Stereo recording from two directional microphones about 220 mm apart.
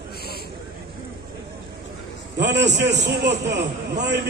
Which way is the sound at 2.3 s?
50° right (ahead or behind).